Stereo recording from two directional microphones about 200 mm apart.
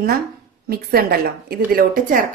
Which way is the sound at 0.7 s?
50° right (ahead or behind).